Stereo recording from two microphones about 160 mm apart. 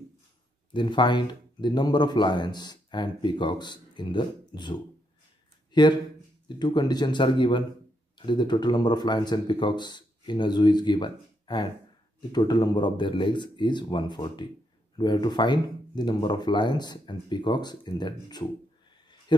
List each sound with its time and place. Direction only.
0.7 s a man's voice: 30° left (ahead or behind)